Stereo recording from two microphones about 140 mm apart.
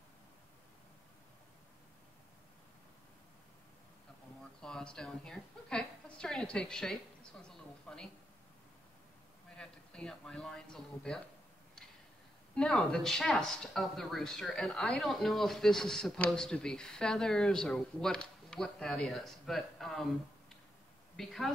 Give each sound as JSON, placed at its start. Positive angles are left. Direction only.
{"t": 4.6, "sound": "a sound", "side_deg": 5}
{"t": 9.6, "sound": "speech", "side_deg": 5}
{"t": 12.5, "sound": "speech", "side_deg": 5}